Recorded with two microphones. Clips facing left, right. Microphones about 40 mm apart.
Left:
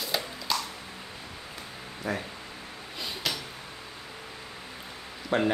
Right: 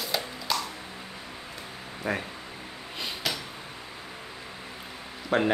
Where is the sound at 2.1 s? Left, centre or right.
Right.